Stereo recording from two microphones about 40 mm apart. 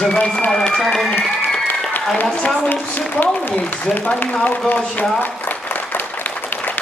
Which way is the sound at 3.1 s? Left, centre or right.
Left.